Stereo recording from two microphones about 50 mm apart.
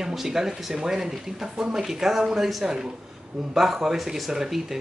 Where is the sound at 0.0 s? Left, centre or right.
Centre.